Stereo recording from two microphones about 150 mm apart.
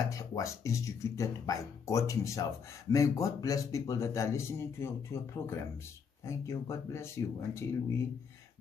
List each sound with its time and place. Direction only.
0.1 s a man's voice: 20° left (ahead or behind)